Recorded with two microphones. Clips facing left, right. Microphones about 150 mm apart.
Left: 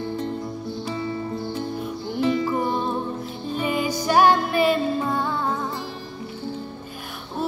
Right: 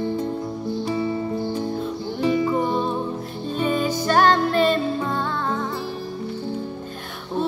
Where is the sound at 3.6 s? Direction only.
10° left (ahead or behind).